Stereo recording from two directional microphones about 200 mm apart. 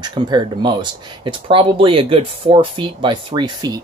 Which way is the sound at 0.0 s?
20° right (ahead or behind).